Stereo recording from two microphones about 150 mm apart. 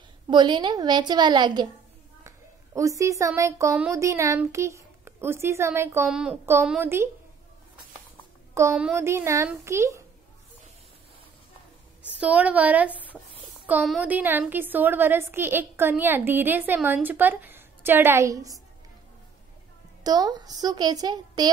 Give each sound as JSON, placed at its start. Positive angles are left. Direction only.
{"t": 0.3, "sound": "a woman's voice", "side_deg": -30}
{"t": 6.0, "sound": "a woman's voice", "side_deg": -5}
{"t": 6.4, "sound": "a woman's voice", "side_deg": -15}
{"t": 8.9, "sound": "a woman's voice", "side_deg": -15}
{"t": 12.1, "sound": "a woman's voice", "side_deg": -10}
{"t": 20.0, "sound": "a woman's voice", "side_deg": -25}